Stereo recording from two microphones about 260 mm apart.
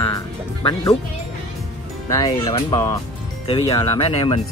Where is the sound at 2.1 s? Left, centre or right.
Centre.